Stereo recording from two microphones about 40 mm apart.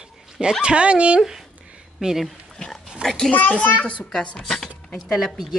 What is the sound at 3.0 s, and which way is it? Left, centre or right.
Speech, centre.